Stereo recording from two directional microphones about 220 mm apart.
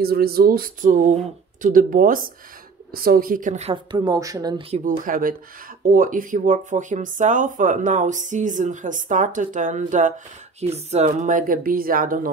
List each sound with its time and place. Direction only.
0.0 s speech: 45° right (ahead or behind)